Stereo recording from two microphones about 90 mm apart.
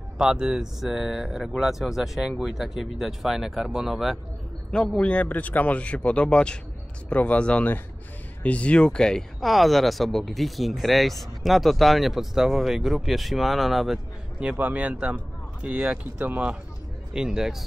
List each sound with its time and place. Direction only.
0.2 s speech: 10° right (ahead or behind)
4.6 s speech: 10° left (ahead or behind)
14.4 s speech: 15° right (ahead or behind)